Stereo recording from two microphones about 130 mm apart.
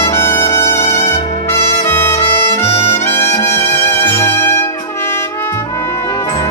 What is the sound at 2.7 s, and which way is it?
Brass instrument, 50° left (ahead or behind).